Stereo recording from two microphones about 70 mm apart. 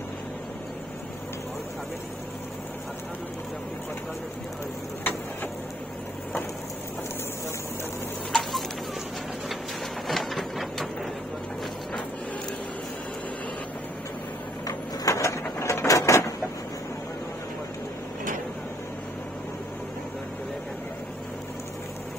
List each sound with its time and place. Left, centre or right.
8.3 s a sound: centre
10.0 s printer: centre
14.7 s printer: left
15.6 s mechanisms: left